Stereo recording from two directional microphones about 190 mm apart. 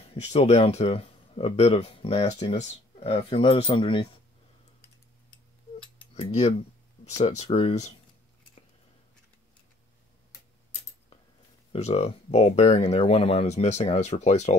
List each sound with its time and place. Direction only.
0.1 s speech: 35° left (ahead or behind)
7.2 s speech: 35° left (ahead or behind)
11.7 s speech: 35° left (ahead or behind)